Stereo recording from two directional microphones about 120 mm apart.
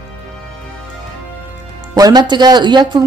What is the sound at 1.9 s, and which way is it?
Speech, 35° right (ahead or behind).